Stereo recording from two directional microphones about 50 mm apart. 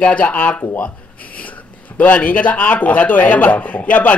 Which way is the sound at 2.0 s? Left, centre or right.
Left.